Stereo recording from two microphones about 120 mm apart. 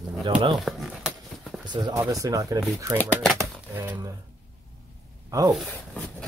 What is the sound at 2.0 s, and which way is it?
Speech, 30° right (ahead or behind).